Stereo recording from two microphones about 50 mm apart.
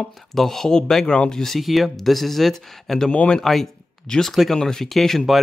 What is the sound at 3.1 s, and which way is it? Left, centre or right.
Speech, left.